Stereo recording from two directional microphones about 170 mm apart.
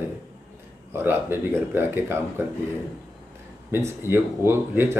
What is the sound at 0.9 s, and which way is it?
Speech, 15° right (ahead or behind).